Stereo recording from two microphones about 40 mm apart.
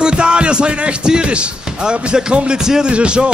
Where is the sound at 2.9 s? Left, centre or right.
Right.